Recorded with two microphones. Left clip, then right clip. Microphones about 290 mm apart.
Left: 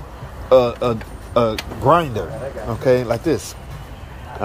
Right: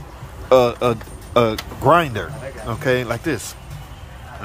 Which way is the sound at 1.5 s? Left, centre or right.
Right.